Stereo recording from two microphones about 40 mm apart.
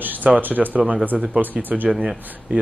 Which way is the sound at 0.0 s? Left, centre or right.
Right.